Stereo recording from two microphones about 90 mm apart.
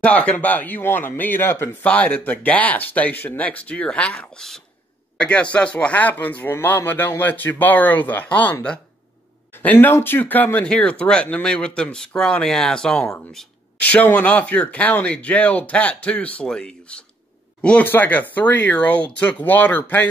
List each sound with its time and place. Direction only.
0.0 s a man's voice: 15° left (ahead or behind)
9.6 s a man's voice: 20° left (ahead or behind)
13.7 s a man's voice: 15° left (ahead or behind)